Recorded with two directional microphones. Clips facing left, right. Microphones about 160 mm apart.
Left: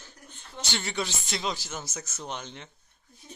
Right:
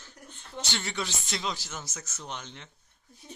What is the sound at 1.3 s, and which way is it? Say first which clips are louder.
A man's voice: left 2 dB; 10° left (ahead or behind).